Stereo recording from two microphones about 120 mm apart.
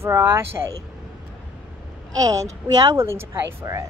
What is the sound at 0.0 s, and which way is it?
Speech, 20° right (ahead or behind).